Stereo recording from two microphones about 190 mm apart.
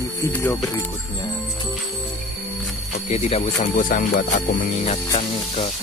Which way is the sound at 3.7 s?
45° left (ahead or behind).